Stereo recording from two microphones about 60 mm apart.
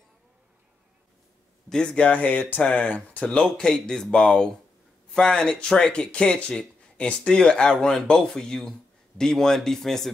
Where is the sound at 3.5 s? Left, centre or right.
Centre.